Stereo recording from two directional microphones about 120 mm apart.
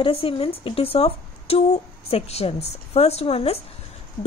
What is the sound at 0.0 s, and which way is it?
Speech, 50° left (ahead or behind).